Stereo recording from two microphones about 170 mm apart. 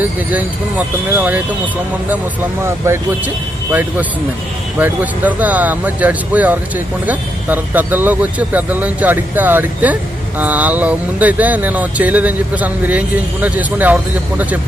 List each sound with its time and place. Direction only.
0.3 s speech: 10° right (ahead or behind)
2.6 s speech: 15° right (ahead or behind)
4.7 s speech: 10° right (ahead or behind)